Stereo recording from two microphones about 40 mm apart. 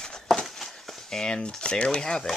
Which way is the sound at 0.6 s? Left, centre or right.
Centre.